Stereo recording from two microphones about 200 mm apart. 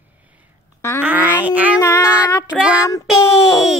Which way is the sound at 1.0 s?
10° right (ahead or behind).